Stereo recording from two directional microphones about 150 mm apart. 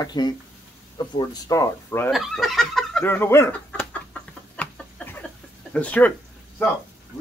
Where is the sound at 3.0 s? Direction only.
15° left (ahead or behind).